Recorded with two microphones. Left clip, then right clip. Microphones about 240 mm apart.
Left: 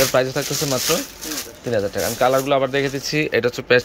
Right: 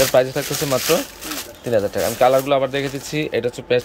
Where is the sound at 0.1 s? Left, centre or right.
Centre.